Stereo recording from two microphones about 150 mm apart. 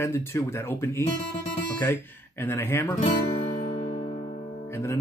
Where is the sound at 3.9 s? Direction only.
35° left (ahead or behind).